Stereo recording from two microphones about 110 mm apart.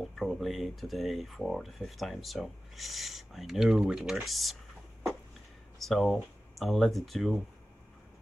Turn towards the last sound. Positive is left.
turn(degrees=0)  # may be behind; listen again after turning